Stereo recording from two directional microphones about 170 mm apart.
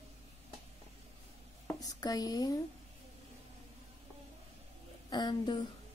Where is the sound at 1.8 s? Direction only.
20° left (ahead or behind).